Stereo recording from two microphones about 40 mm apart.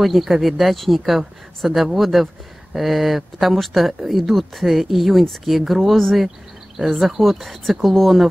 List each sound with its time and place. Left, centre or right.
0.0 s speech: centre